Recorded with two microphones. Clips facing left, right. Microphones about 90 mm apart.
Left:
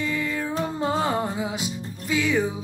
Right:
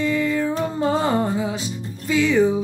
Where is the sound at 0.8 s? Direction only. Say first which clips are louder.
Right 4 dB; 5° left (ahead or behind).